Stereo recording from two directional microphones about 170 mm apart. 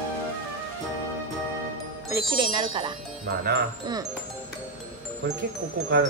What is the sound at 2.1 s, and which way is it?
Speech, 25° right (ahead or behind).